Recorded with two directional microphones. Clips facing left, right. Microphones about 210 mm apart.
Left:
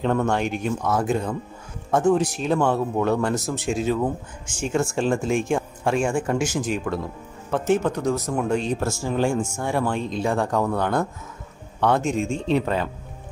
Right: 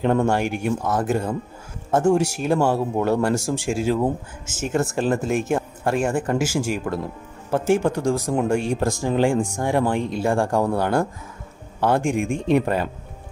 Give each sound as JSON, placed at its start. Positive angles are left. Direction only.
{"t": 0.3, "sound": "speech", "side_deg": -10}